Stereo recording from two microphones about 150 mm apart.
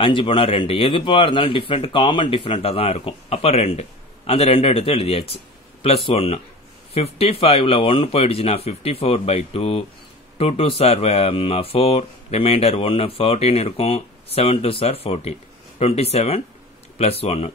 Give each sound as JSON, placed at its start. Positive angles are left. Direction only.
{"t": 0.0, "sound": "speech", "side_deg": 35}